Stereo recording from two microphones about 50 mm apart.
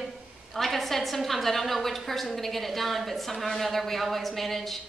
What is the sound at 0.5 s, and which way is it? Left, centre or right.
A woman's voice, centre.